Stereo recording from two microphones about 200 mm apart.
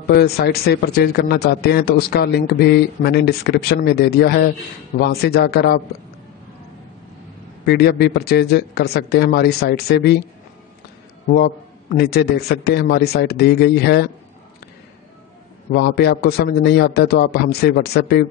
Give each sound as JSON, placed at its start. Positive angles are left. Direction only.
{"t": 0.1, "sound": "a man's voice", "side_deg": 50}
{"t": 7.6, "sound": "a man's voice", "side_deg": 55}
{"t": 11.3, "sound": "a man's voice", "side_deg": 50}
{"t": 15.7, "sound": "a man's voice", "side_deg": 55}